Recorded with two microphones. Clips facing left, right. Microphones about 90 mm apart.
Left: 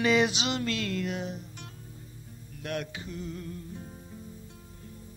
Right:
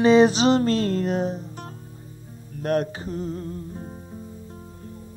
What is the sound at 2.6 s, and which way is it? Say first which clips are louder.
Music: right 11 dB; 40° right (ahead or behind).